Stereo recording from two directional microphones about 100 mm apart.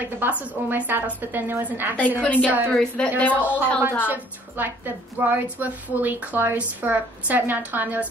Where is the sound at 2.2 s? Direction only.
10° left (ahead or behind).